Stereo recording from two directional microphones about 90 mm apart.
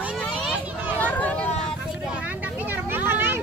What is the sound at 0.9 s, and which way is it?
Vehicle, 20° left (ahead or behind).